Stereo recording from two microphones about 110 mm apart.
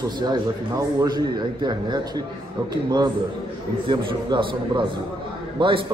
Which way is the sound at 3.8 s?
50° right (ahead or behind).